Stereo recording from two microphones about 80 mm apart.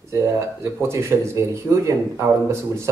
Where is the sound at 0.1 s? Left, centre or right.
Right.